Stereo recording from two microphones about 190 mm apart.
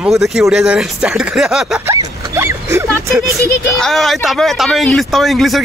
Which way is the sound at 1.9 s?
15° right (ahead or behind).